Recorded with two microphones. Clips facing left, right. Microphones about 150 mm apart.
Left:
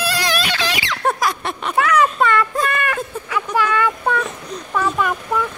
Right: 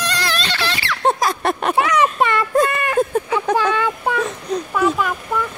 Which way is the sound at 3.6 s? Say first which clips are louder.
Even; 25° right (ahead or behind).